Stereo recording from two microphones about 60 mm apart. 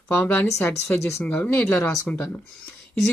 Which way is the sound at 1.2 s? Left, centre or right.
Left.